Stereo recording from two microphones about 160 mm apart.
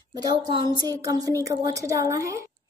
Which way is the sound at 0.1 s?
25° right (ahead or behind).